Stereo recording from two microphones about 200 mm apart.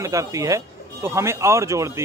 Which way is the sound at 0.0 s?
15° right (ahead or behind).